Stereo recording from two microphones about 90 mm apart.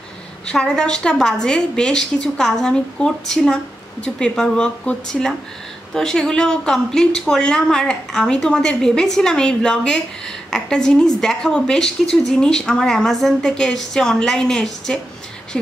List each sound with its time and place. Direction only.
0.5 s a woman's voice: 10° left (ahead or behind)